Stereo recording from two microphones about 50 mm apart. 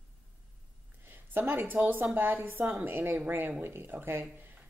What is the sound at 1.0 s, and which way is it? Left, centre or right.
A woman's voice, right.